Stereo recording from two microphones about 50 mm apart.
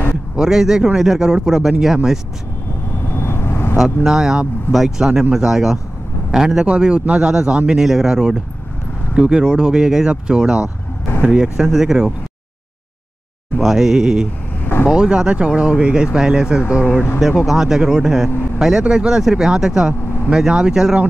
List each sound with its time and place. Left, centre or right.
0.4 s speech: centre
3.1 s vehicle: left
3.7 s speech: centre
13.6 s speech: centre